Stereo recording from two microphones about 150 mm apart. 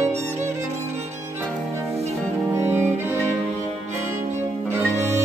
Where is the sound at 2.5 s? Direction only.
15° right (ahead or behind).